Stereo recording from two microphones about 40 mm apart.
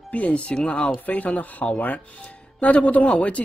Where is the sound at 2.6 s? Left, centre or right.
Left.